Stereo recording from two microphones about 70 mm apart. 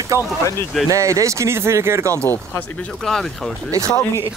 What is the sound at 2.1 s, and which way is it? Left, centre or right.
Speech, left.